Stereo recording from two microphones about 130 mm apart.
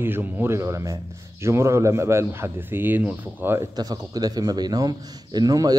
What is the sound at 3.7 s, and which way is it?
A man's voice, 30° right (ahead or behind).